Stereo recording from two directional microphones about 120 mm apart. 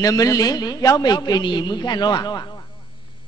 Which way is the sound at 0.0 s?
30° left (ahead or behind).